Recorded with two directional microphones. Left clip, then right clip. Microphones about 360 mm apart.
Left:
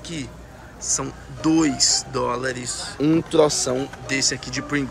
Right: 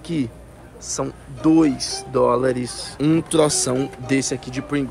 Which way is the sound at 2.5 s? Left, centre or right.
Right.